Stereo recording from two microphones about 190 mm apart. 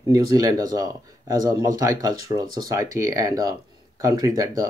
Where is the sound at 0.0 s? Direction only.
20° right (ahead or behind).